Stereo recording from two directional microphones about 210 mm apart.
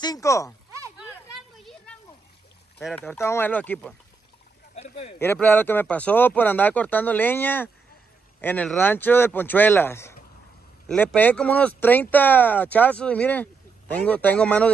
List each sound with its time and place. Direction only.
0.0 s speech: 15° left (ahead or behind)
2.8 s speech: centre (ahead or behind)
3.2 s speech: 10° left (ahead or behind)
4.7 s speech: 30° left (ahead or behind)
5.2 s speech: 10° left (ahead or behind)